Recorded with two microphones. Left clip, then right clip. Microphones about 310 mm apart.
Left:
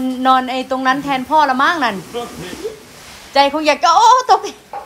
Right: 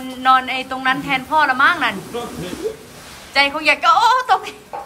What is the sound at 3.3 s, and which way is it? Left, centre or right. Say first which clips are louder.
A woman's voice: left 2 dB; centre.